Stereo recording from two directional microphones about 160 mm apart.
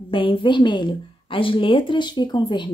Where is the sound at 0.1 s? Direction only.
30° left (ahead or behind).